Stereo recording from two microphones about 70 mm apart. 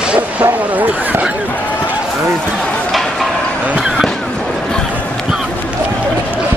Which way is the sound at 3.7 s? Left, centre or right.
Centre.